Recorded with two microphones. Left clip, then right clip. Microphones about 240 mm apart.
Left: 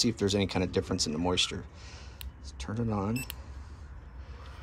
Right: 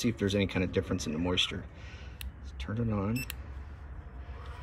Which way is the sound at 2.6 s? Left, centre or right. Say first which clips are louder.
Left 1 dB; centre.